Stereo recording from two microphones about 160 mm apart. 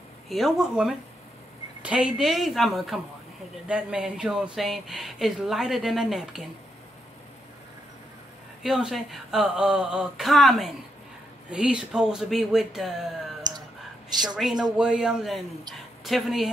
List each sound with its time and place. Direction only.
0.3 s speech: centre (ahead or behind)
8.6 s speech: centre (ahead or behind)
13.5 s clicking: 25° right (ahead or behind)
14.3 s speech: 5° right (ahead or behind)